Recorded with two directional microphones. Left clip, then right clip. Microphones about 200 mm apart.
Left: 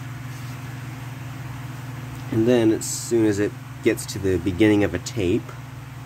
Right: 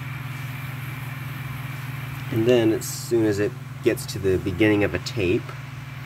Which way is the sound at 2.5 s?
5° left (ahead or behind).